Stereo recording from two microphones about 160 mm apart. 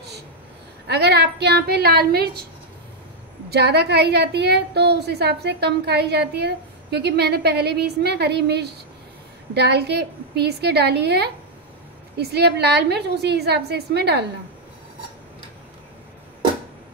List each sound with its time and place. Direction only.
0.8 s a woman's voice: 90° right
3.4 s a woman's voice: 90° right